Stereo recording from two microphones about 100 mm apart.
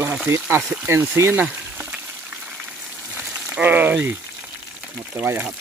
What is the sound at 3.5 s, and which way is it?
Speech, 15° right (ahead or behind).